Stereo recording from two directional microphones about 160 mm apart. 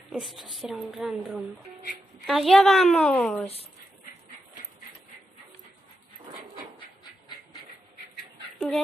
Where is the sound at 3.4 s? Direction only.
40° left (ahead or behind).